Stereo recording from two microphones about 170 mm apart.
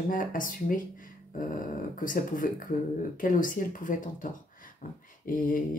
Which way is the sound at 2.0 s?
55° left (ahead or behind).